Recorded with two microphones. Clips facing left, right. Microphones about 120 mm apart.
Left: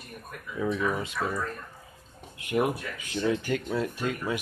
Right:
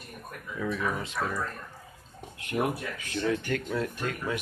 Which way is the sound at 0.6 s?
15° left (ahead or behind).